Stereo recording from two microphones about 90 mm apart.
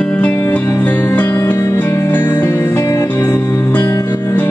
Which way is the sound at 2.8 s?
40° left (ahead or behind).